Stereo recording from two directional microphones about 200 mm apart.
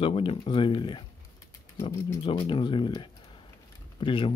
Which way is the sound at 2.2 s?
25° left (ahead or behind).